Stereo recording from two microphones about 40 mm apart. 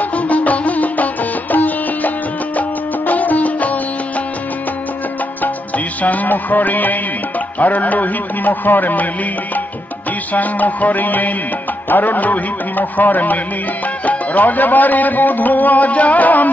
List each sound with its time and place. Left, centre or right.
0.0 s music: left
6.0 s speech: left
10.3 s speech: left